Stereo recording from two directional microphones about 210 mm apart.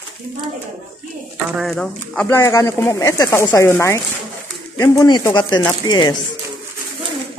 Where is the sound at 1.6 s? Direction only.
Centre (ahead or behind).